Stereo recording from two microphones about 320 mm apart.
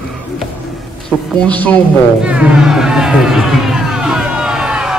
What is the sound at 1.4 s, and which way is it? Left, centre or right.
Speech, centre.